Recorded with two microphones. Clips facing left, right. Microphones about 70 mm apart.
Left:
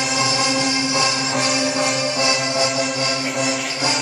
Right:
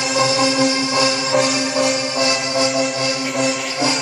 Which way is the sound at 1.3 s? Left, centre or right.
Centre.